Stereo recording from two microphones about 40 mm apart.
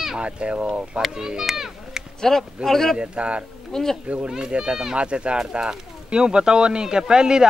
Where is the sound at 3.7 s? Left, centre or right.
Centre.